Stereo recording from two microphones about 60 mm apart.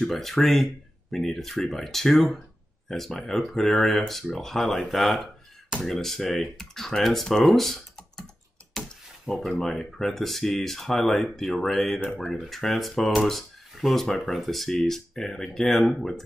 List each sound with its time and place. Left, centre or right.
0.0 s speech: centre
8.8 s a sound: centre
9.2 s speech: centre